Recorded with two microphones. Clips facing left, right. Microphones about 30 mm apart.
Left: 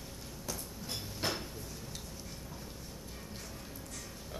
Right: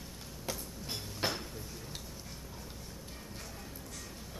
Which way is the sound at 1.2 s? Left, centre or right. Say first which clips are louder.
Right 1 dB; right.